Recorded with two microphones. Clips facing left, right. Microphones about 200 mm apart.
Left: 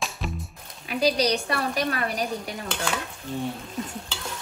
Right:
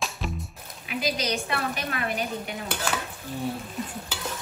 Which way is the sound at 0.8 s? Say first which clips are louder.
Left 6 dB; 35° left (ahead or behind).